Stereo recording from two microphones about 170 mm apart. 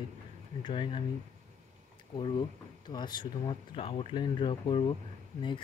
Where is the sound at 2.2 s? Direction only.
25° left (ahead or behind).